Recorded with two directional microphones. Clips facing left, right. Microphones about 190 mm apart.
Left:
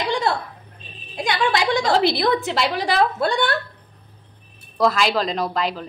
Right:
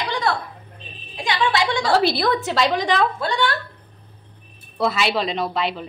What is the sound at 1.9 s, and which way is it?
A woman's voice, 20° left (ahead or behind).